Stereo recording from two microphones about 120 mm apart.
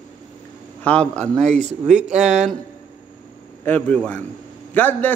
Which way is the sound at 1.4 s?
70° right (ahead or behind).